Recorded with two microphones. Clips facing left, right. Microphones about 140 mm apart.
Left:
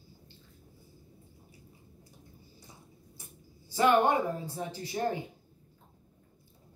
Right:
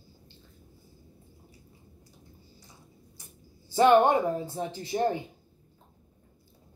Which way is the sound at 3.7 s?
30° right (ahead or behind).